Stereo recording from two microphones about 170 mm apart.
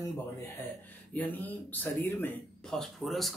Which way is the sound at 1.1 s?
10° left (ahead or behind).